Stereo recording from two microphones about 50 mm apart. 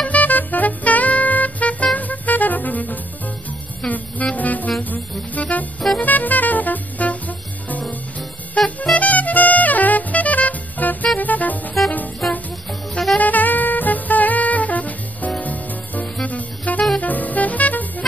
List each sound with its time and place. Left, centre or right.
0.0 s music: left
12.2 s music: centre
13.2 s music: left